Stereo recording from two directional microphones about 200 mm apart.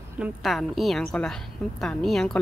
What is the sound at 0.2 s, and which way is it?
A woman's voice, centre (ahead or behind).